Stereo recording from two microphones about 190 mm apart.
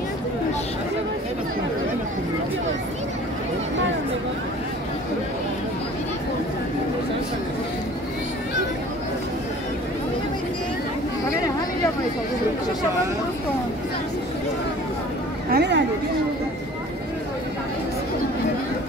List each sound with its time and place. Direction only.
15.5 s chatter: 65° right (ahead or behind)